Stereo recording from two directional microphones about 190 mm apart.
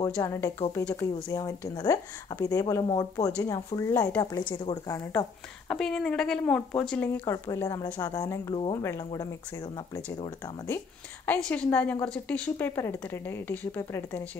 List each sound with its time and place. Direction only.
0.0 s speech: 15° left (ahead or behind)
5.7 s speech: centre (ahead or behind)
11.2 s speech: 5° left (ahead or behind)